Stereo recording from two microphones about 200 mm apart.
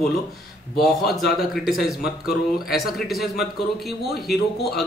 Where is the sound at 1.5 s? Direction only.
Centre (ahead or behind).